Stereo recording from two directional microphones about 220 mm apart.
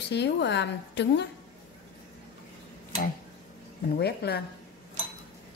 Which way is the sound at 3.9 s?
45° left (ahead or behind).